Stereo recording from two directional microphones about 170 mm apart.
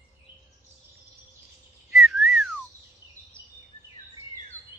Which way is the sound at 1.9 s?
Centre (ahead or behind).